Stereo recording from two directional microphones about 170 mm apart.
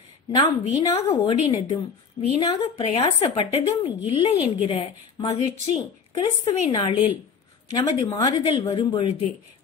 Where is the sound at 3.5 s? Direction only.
35° left (ahead or behind).